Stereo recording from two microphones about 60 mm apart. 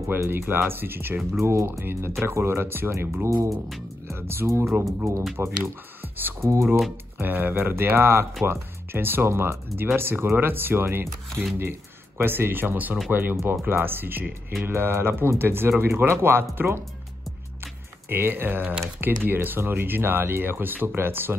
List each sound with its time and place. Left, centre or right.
0.1 s speech: right
1.4 s speech: right
5.4 s speech: right
7.2 s speech: right
18.1 s speech: right